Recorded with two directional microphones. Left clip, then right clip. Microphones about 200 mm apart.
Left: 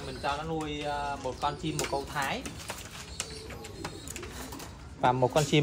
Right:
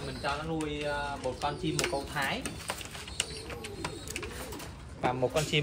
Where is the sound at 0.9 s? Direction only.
15° left (ahead or behind).